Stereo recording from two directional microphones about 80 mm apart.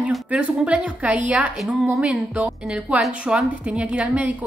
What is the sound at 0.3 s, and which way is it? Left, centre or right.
A woman's voice, centre.